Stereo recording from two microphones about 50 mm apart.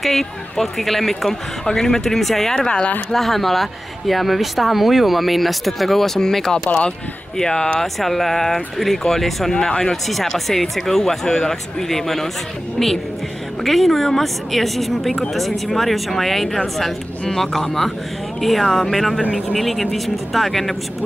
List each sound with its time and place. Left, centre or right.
0.0 s speech: centre
3.1 s speech: centre
7.8 s speech: centre
10.0 s speech: centre